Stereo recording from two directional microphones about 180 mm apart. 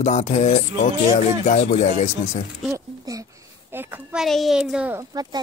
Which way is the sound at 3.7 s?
10° right (ahead or behind).